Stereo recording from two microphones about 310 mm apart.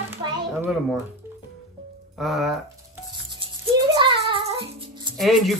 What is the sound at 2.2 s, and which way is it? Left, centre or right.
Speech, centre.